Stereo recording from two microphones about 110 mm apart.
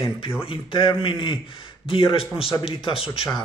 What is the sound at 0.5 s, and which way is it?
A man's voice, 55° left (ahead or behind).